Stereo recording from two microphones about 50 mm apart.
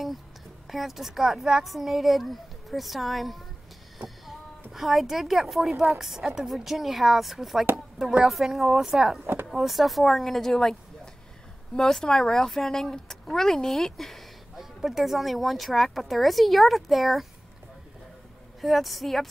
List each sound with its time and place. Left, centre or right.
0.7 s speech: centre
9.2 s speech: right
9.5 s speech: centre
18.6 s speech: centre